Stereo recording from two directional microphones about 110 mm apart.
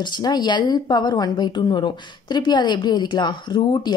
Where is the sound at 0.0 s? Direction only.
40° left (ahead or behind).